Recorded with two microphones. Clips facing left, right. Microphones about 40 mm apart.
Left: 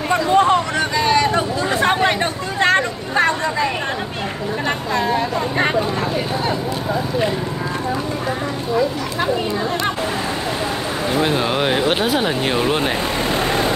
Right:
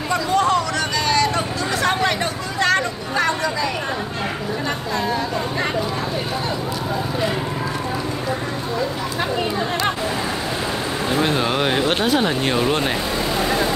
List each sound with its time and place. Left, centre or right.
0.1 s hubbub: left
2.6 s a sound: left
11.1 s speech: centre